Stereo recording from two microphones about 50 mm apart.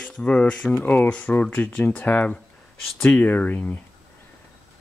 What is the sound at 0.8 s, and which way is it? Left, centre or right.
Speech, left.